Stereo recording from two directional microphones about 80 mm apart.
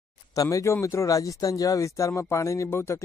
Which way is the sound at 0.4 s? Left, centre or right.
Left.